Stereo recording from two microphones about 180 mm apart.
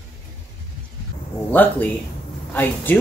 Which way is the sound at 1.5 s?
10° left (ahead or behind).